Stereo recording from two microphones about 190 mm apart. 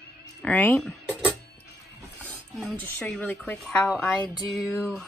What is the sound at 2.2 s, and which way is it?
Speech, 5° left (ahead or behind).